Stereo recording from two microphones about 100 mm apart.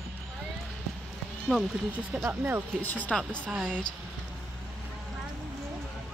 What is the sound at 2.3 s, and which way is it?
Speech, 20° right (ahead or behind).